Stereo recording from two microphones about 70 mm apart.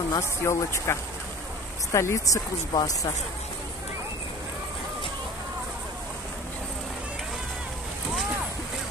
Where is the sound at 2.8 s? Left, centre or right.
Left.